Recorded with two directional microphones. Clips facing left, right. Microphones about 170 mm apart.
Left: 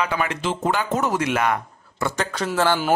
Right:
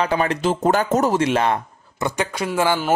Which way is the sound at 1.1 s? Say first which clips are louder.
Right 3 dB; 30° right (ahead or behind).